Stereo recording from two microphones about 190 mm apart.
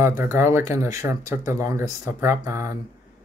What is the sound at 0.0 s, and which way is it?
Speech, 10° right (ahead or behind).